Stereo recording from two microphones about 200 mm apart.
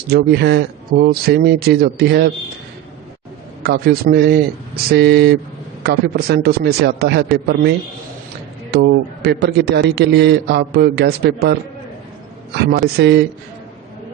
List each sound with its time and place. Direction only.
0.1 s speech: 55° right (ahead or behind)
3.6 s a man's voice: 55° right (ahead or behind)
8.7 s a man's voice: 55° right (ahead or behind)
12.5 s a man's voice: 50° right (ahead or behind)